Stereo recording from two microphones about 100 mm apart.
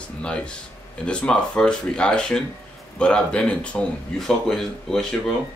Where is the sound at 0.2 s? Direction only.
10° left (ahead or behind).